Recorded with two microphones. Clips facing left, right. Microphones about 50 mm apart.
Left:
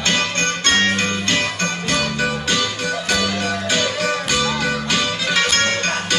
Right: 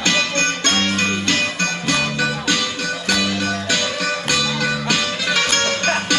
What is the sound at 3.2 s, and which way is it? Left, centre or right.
Music, centre.